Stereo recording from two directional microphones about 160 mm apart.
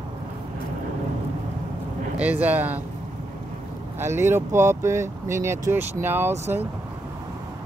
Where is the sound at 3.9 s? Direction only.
15° right (ahead or behind).